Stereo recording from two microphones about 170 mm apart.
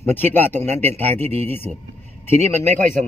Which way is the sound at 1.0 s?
40° right (ahead or behind).